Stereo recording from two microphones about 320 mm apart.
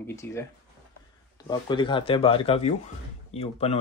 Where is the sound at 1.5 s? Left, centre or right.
Centre.